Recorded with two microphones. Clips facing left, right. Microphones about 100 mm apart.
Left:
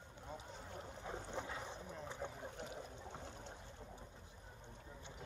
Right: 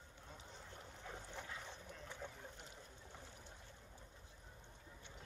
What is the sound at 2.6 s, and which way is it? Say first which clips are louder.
Trickle: left 9 dB; 65° left (ahead or behind).